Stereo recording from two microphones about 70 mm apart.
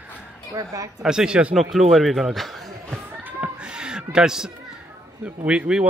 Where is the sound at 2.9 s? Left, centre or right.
Right.